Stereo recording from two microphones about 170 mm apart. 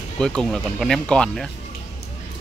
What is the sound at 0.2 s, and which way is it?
Speech, 5° left (ahead or behind).